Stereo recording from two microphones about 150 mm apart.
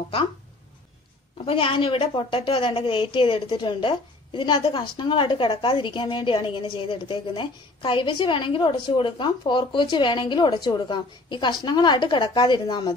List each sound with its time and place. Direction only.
1.4 s a woman's voice: 40° left (ahead or behind)